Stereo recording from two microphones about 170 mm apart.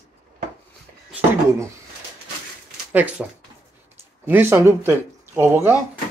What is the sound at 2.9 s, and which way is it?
Speech, 10° right (ahead or behind).